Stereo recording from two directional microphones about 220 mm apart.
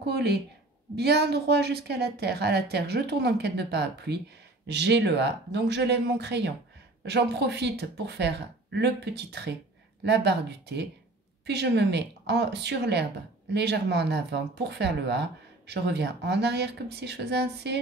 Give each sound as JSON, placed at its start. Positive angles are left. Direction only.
{"t": 0.0, "sound": "speech", "side_deg": -45}
{"t": 11.4, "sound": "speech", "side_deg": -50}